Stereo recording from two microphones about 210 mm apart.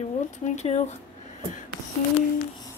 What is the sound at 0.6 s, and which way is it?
Speech, 35° left (ahead or behind).